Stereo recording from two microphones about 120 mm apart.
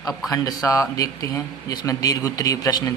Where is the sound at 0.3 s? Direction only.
30° left (ahead or behind).